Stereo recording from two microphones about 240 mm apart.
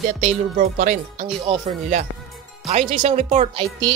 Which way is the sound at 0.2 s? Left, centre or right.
Right.